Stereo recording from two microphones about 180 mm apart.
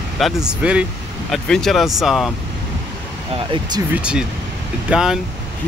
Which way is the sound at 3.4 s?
25° right (ahead or behind).